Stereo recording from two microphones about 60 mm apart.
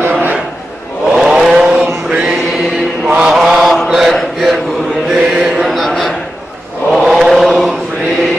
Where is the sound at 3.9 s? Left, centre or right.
Centre.